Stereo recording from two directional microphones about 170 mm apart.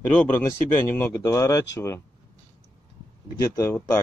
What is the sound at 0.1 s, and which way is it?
Speech, 15° left (ahead or behind).